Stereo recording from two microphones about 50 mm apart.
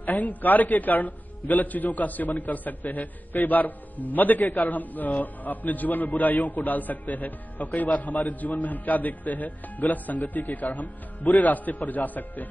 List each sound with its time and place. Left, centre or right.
0.0 s a man's voice: left